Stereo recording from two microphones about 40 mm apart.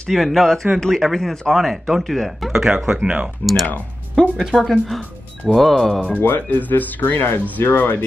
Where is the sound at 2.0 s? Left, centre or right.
Centre.